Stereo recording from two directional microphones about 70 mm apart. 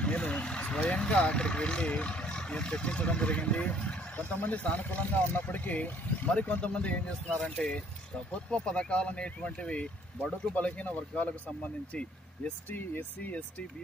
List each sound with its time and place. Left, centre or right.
0.0 s speech: centre
12.6 s speech: left